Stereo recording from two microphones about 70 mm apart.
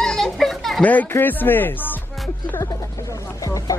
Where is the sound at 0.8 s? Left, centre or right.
Left.